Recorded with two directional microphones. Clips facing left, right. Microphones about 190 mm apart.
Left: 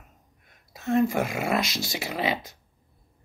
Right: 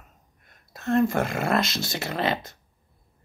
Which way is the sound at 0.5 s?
10° left (ahead or behind).